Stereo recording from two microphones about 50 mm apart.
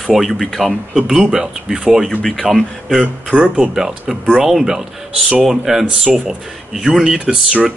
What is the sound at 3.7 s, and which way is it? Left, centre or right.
Speech, centre.